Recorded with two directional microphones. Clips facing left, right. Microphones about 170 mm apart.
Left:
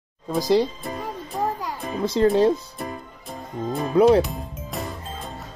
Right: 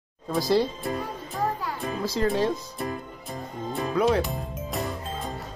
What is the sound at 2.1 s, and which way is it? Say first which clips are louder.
Speech: left 7 dB; 30° left (ahead or behind).